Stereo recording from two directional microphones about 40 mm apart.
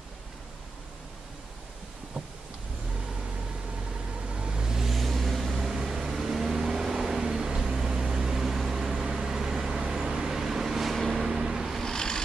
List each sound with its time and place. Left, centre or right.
4.3 s vehicle: right
4.7 s vehicle: centre
11.2 s vehicle: centre
11.8 s vehicle: centre